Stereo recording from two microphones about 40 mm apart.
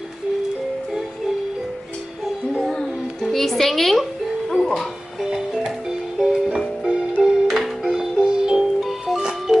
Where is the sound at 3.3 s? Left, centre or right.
Centre.